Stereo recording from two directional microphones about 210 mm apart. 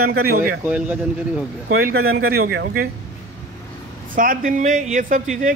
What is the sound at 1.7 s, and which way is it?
Speech, 50° right (ahead or behind).